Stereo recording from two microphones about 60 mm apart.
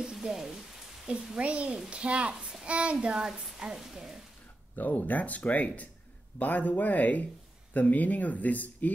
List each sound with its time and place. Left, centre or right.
0.0 s rain: centre
1.0 s a child's voice: centre
4.7 s speech: left